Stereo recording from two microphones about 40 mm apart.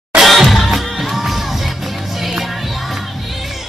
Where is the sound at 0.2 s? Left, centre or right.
Centre.